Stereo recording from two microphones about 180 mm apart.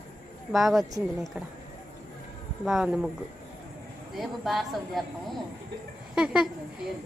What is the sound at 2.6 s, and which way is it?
Speech, centre (ahead or behind).